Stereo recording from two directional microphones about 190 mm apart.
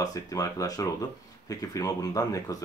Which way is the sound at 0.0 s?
20° left (ahead or behind).